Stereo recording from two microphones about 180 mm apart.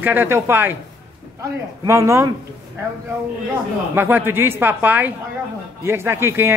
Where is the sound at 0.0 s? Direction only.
10° right (ahead or behind).